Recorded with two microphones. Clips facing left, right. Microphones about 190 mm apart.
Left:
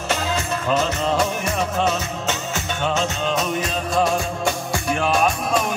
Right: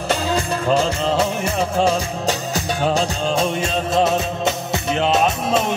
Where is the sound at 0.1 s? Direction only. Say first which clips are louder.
Right 3 dB; 35° right (ahead or behind).